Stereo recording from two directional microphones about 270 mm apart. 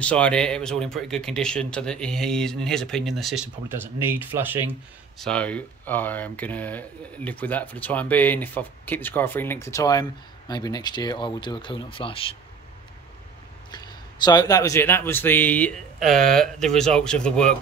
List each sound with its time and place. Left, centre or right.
0.0 s speech: centre
5.2 s speech: centre
13.7 s speech: centre